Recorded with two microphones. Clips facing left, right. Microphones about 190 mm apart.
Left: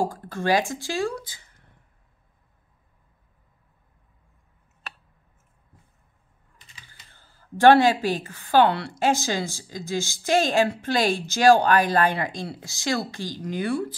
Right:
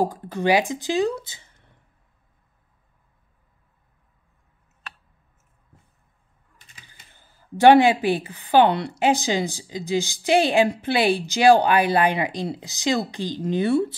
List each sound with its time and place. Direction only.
0.0 s speech: 15° right (ahead or behind)
7.1 s speech: 15° right (ahead or behind)